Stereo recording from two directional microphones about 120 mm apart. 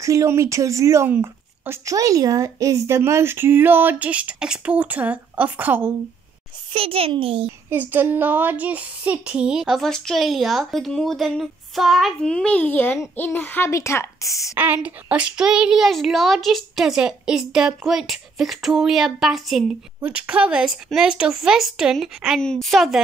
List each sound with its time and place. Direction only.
0.0 s speech: 25° right (ahead or behind)
6.7 s a child's voice: 50° right (ahead or behind)
7.9 s a child's voice: 15° right (ahead or behind); by 14.5 s 25° left (ahead or behind)
14.6 s speech: 15° right (ahead or behind)